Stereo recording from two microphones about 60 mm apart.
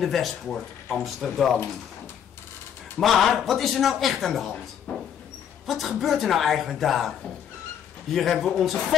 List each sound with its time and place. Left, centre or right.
0.0 s speech: centre
3.0 s speech: centre
4.9 s a sound: left
5.7 s speech: centre